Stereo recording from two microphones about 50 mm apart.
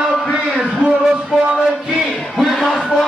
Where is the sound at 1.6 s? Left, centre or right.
Centre.